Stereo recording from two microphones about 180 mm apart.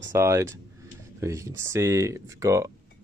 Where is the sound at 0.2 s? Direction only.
15° right (ahead or behind).